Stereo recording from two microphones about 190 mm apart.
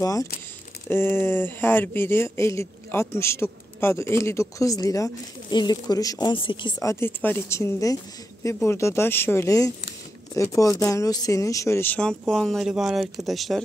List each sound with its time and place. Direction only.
0.0 s speech: 20° left (ahead or behind); by 13.6 s centre (ahead or behind)